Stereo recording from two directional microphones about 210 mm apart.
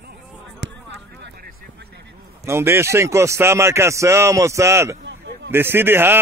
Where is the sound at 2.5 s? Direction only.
10° right (ahead or behind).